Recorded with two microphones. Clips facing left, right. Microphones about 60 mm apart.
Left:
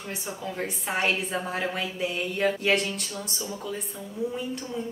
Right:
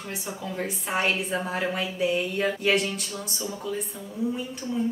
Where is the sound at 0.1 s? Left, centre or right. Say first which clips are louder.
Even; centre.